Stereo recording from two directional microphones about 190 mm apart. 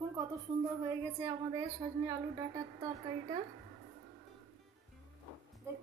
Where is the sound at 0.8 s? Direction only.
15° right (ahead or behind).